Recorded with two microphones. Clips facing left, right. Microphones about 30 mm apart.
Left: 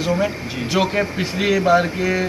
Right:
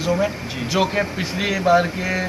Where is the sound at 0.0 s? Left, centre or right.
Centre.